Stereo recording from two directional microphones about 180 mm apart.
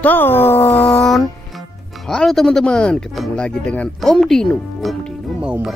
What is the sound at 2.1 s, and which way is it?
Speech, centre (ahead or behind).